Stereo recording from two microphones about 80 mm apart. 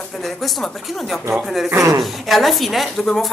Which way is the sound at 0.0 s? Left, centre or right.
Centre.